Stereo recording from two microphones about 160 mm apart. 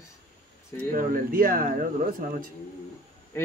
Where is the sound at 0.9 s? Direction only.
60° right (ahead or behind).